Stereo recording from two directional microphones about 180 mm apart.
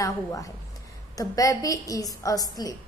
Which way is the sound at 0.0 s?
20° left (ahead or behind).